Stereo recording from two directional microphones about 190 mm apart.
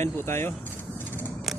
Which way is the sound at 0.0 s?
15° left (ahead or behind).